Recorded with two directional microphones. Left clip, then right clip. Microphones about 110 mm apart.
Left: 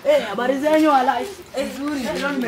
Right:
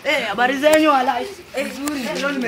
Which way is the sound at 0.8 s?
5° right (ahead or behind).